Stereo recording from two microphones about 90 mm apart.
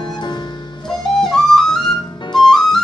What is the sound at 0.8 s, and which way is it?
Flute, 5° left (ahead or behind).